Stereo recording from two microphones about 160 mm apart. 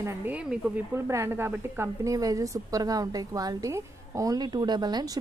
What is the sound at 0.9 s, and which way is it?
A woman's voice, 15° right (ahead or behind).